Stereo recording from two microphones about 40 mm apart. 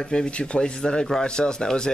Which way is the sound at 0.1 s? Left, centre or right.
Left.